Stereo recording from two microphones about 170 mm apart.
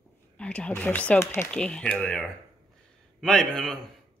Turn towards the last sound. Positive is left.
turn(degrees=5)  # may be behind; listen again after turning